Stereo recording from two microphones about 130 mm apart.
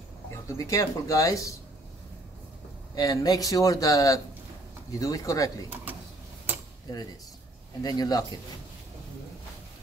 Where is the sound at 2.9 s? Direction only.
30° left (ahead or behind).